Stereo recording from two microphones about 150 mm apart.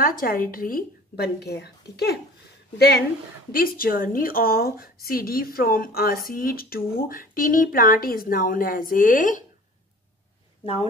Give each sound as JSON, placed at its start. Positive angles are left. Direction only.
{"t": 0.0, "sound": "a woman's voice", "side_deg": 70}
{"t": 3.5, "sound": "a woman's voice", "side_deg": 75}
{"t": 10.6, "sound": "a woman's voice", "side_deg": 40}